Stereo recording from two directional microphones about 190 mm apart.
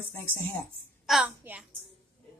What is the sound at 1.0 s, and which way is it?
Speech, centre (ahead or behind).